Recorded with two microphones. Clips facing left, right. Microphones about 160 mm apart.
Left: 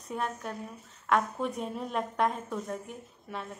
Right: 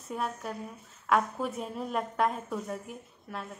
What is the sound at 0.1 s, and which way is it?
A woman's voice, 5° right (ahead or behind).